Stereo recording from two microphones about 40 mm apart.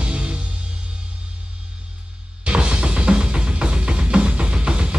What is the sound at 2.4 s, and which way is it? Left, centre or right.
Music, right.